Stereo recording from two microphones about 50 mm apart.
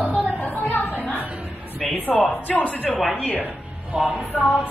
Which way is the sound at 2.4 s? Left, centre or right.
Left.